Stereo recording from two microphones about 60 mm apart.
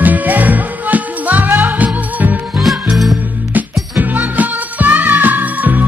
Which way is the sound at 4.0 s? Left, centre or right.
Right.